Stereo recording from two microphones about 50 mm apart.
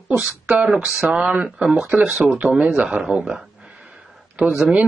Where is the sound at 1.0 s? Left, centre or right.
Right.